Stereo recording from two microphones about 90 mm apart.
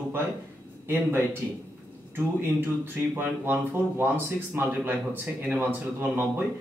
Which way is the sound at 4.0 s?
20° right (ahead or behind).